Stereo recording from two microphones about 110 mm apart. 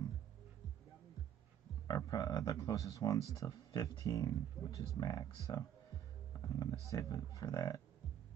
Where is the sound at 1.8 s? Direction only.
40° left (ahead or behind).